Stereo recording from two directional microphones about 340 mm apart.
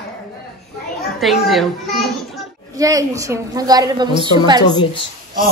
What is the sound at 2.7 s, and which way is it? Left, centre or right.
A woman's voice, centre.